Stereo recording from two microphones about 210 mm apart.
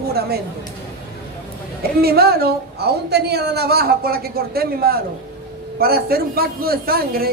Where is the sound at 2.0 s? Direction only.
45° right (ahead or behind).